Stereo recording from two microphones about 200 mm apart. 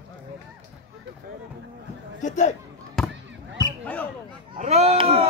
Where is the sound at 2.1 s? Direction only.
40° left (ahead or behind).